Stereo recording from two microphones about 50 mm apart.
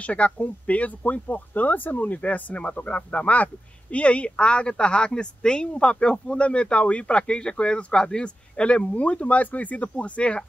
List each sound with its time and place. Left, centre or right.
0.0 s speech: left